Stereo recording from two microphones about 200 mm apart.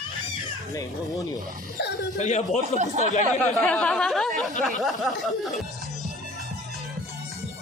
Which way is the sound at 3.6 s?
5° left (ahead or behind).